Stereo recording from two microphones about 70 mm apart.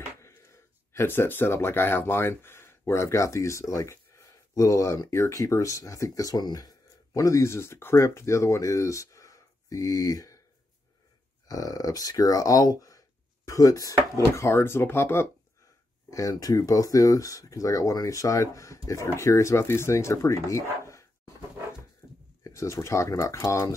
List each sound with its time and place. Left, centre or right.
0.2 s speech: left
6.4 s speech: left
11.4 s speech: left
16.1 s speech: left
22.4 s speech: left